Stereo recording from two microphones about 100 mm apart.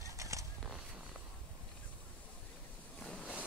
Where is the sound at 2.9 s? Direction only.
10° left (ahead or behind).